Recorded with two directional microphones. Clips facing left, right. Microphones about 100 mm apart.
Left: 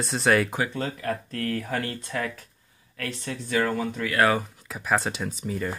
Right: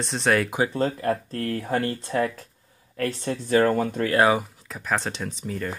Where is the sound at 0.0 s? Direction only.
5° left (ahead or behind).